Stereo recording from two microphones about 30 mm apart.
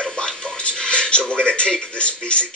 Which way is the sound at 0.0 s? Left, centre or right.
Left.